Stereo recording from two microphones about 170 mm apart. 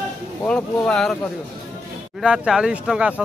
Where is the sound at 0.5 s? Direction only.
5° left (ahead or behind).